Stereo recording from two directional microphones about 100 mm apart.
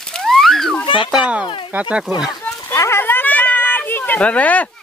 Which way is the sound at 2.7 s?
25° left (ahead or behind).